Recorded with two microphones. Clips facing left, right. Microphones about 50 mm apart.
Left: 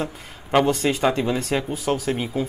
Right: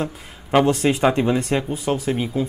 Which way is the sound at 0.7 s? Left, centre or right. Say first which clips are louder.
Right 3 dB; centre.